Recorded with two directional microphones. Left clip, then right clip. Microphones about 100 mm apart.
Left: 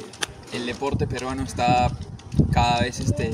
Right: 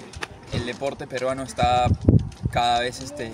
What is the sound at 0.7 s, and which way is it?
Speech, 45° right (ahead or behind).